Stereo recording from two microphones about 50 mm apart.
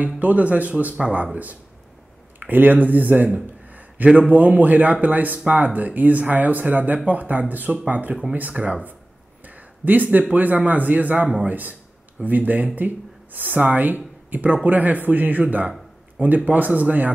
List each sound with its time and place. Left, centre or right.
0.2 s a man's voice: right
9.4 s a sound: right
10.1 s speech: right